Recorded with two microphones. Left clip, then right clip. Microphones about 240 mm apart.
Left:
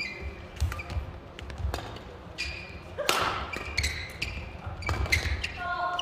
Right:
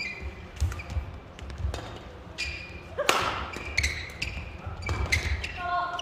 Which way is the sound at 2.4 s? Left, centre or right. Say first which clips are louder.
Right 2 dB; centre.